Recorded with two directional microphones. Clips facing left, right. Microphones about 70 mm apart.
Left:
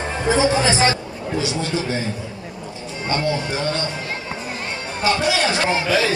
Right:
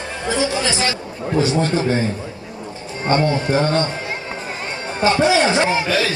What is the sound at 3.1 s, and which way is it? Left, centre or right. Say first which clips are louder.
Speech: right 5 dB; right.